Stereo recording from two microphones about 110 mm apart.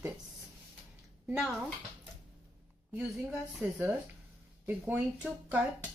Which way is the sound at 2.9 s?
5° right (ahead or behind).